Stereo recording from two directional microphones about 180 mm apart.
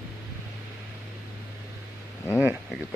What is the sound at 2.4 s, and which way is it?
Speech, 10° right (ahead or behind).